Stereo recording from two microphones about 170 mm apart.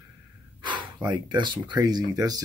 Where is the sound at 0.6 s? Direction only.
25° right (ahead or behind).